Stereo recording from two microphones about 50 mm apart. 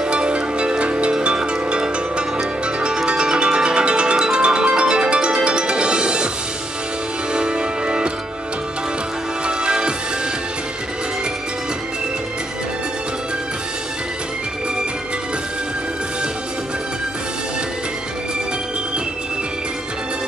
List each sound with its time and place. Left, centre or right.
0.0 s music: centre
7.3 s music: centre
9.5 s music: centre